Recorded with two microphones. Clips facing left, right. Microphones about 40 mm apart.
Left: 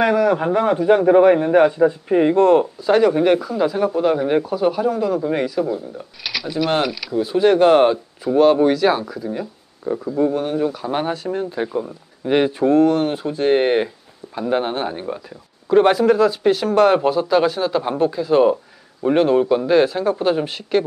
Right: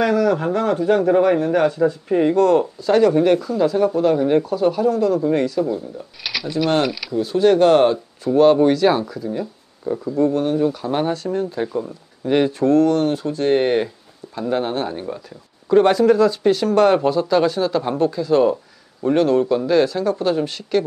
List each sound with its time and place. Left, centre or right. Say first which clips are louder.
0.0 s speech: left 1 dB; centre
6.2 s speech: right 1 dB; centre